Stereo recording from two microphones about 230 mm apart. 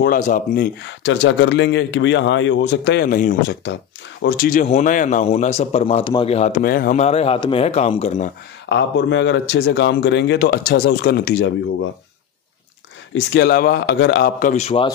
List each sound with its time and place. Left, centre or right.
0.0 s speech: left
0.8 s a man's voice: left
8.6 s a man's voice: left
13.1 s a man's voice: left
14.4 s a man's voice: left